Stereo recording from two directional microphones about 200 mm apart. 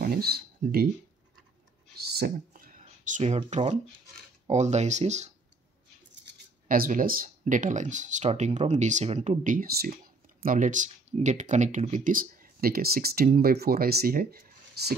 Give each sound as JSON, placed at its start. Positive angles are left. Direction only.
{"t": 0.0, "sound": "speech", "side_deg": -50}
{"t": 2.0, "sound": "a sound", "side_deg": -50}
{"t": 4.5, "sound": "speech", "side_deg": -35}
{"t": 6.7, "sound": "speech", "side_deg": -40}